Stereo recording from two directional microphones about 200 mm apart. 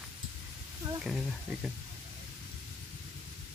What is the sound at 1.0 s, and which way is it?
Speech, centre (ahead or behind).